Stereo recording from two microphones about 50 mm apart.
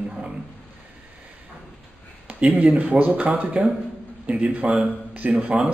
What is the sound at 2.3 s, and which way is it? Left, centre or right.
A man's voice, right.